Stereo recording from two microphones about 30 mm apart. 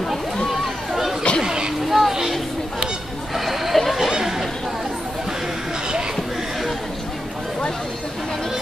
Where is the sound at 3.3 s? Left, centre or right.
Centre.